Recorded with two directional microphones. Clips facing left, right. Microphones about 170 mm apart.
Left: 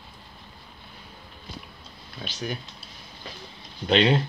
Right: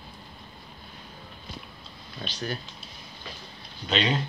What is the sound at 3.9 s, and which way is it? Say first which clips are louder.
Speech: left 6 dB; 60° left (ahead or behind).